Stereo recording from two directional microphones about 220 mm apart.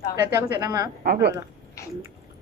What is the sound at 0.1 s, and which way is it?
Speech, 15° right (ahead or behind).